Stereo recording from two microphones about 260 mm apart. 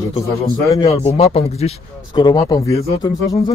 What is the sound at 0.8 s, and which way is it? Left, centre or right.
Speech, left.